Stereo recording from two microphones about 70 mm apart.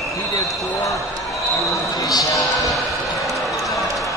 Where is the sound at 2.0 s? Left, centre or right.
Left.